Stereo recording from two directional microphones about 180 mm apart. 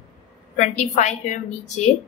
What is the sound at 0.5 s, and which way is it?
A woman's voice, 40° left (ahead or behind).